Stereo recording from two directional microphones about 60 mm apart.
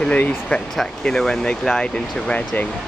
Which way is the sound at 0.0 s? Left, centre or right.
Centre.